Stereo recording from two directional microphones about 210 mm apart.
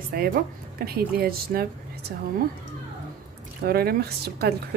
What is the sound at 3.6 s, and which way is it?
Speech, 45° right (ahead or behind).